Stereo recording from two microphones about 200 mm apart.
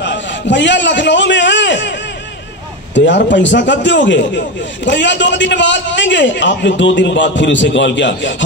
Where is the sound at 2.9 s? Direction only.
65° left (ahead or behind).